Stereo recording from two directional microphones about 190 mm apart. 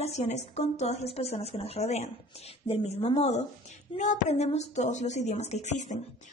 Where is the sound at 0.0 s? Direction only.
35° left (ahead or behind).